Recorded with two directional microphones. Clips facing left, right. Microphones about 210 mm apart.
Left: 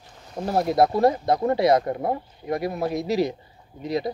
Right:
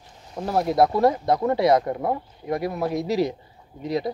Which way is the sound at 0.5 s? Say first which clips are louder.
Even; 35° left (ahead or behind).